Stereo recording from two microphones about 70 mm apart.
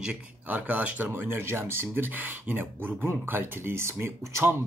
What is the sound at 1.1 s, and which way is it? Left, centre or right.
Speech, right.